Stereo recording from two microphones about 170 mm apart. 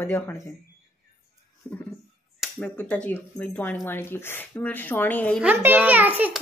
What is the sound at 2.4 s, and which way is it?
Speech, 5° left (ahead or behind).